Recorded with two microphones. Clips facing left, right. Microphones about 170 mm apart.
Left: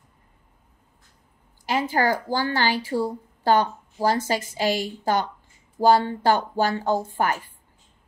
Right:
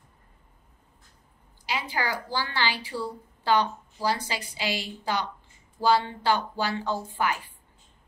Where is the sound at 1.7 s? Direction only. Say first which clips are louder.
Left 8 dB; 45° left (ahead or behind).